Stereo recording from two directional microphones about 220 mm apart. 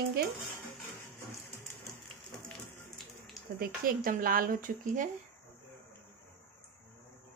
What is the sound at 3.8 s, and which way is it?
Speech, 40° right (ahead or behind).